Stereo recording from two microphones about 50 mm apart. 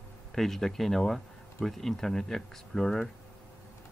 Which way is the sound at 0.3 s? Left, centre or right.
Centre.